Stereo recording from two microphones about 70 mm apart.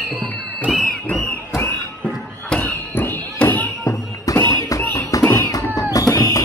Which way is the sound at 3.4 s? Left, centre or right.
Left.